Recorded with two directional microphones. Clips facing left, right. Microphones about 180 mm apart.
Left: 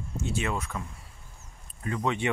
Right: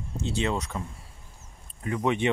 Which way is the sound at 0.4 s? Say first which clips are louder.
Right 4 dB; 20° right (ahead or behind).